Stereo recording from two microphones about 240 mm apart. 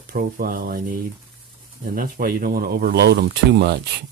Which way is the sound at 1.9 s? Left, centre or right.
Right.